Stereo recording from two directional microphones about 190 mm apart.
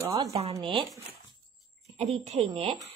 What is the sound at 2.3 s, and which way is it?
Speech, 30° right (ahead or behind).